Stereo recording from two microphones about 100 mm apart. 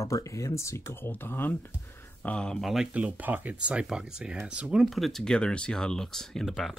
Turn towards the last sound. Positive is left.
turn(degrees=0)  # may be behind; listen again after turning